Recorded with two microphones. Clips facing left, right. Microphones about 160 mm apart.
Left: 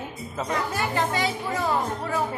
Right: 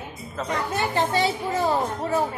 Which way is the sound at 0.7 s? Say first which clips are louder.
Right 5 dB; 30° right (ahead or behind).